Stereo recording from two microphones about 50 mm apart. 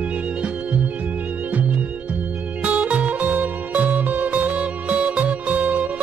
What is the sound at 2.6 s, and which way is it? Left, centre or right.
Music, right.